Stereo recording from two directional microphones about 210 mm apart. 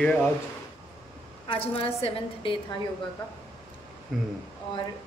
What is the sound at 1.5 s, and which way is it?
A woman's voice, 25° left (ahead or behind).